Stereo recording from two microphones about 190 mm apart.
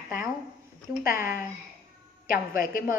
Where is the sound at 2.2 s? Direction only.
45° left (ahead or behind).